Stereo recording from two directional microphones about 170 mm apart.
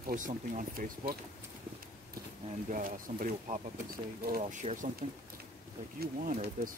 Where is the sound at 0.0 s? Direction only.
50° right (ahead or behind).